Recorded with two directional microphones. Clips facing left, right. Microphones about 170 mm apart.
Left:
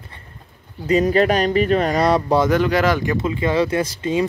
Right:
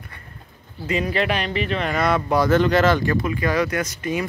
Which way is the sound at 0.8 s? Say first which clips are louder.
Left 7 dB; 40° left (ahead or behind).